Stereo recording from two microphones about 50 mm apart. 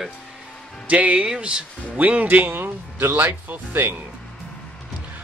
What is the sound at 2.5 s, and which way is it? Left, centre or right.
Speech, right.